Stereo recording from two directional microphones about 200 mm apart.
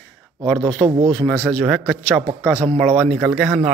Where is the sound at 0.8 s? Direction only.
20° right (ahead or behind).